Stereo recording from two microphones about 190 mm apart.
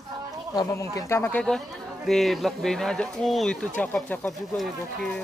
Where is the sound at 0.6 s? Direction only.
15° left (ahead or behind).